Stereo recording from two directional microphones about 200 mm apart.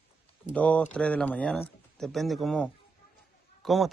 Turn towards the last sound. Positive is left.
turn(degrees=0)  # may be behind; listen again after turning